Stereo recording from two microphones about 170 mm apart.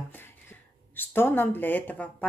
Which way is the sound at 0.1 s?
10° left (ahead or behind).